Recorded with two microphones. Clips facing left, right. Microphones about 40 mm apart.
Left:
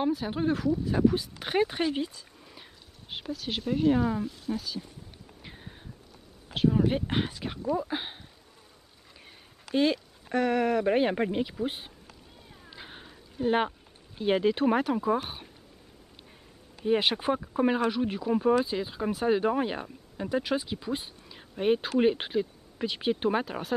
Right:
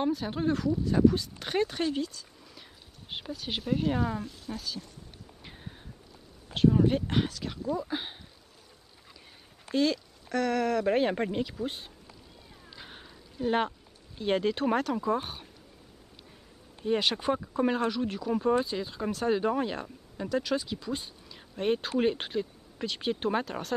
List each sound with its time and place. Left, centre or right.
0.0 s speech: centre
1.9 s dog: left
3.1 s speech: centre
5.4 s a sound: centre
6.5 s speech: centre
6.9 s speech: centre
9.8 s speech: left
12.6 s cat: centre
13.4 s speech: centre
16.8 s speech: centre